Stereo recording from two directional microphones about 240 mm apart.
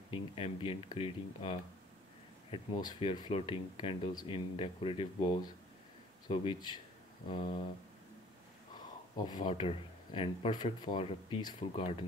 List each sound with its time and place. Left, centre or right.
0.1 s speech: left
9.1 s speech: centre